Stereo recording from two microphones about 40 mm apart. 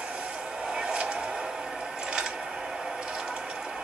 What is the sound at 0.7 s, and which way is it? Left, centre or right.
Vehicle, right.